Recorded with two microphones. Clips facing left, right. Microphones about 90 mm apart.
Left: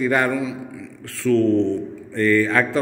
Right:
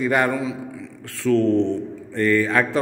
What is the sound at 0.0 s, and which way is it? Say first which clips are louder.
A man's voice: even; 25° right (ahead or behind).